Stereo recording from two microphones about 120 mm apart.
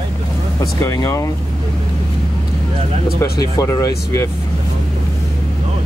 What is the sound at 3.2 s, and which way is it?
Speech, 25° left (ahead or behind).